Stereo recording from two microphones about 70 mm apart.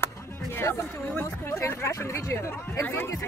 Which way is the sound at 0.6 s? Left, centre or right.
Left.